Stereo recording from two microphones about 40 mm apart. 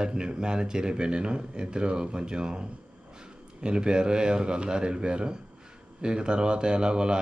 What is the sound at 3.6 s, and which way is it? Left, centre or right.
Speech, right.